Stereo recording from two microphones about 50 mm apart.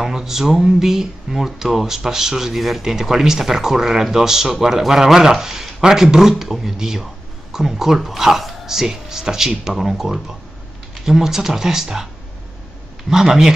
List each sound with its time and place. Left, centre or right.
0.0 s speech: centre
13.1 s speech: centre